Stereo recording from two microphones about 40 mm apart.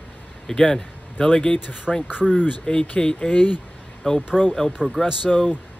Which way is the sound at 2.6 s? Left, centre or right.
Left.